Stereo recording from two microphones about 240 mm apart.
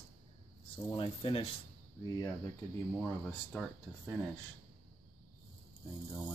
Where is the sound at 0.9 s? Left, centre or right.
Left.